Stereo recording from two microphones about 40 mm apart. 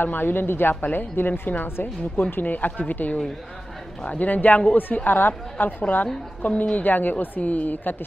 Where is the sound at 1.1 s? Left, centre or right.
Left.